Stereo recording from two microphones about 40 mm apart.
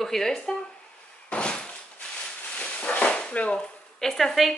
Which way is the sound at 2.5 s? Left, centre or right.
Left.